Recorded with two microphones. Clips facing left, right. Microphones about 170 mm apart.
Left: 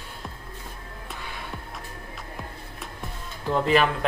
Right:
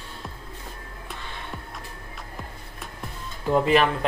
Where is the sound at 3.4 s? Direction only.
Centre (ahead or behind).